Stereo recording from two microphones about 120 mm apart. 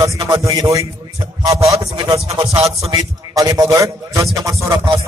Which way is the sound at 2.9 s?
30° right (ahead or behind).